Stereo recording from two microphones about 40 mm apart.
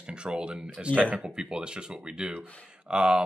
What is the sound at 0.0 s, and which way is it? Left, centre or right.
Speech, right.